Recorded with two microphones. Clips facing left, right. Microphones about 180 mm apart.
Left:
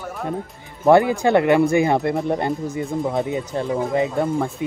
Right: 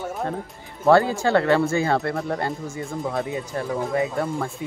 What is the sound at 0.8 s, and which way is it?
Speech, 20° left (ahead or behind).